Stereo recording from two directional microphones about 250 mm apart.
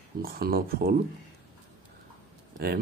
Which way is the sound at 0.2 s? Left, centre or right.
Right.